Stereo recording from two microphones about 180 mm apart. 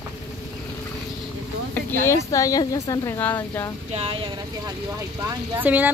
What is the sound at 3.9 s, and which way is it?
Speech, 30° right (ahead or behind).